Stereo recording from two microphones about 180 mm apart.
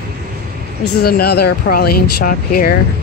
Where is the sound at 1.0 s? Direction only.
60° left (ahead or behind).